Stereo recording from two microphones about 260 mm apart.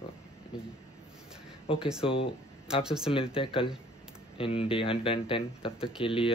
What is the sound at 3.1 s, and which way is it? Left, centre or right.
Speech, centre.